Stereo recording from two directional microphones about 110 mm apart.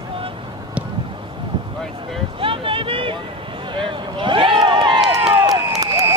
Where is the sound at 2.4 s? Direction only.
55° right (ahead or behind).